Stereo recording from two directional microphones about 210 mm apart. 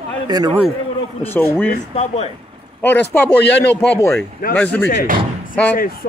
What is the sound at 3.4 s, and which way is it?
Speech, 55° left (ahead or behind).